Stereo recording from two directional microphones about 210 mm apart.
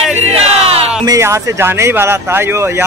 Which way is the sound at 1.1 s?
15° right (ahead or behind).